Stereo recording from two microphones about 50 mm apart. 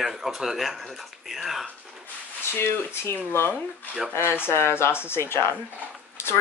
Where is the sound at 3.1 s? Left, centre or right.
Left.